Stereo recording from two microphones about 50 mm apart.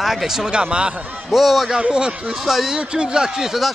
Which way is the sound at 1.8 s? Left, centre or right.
Centre.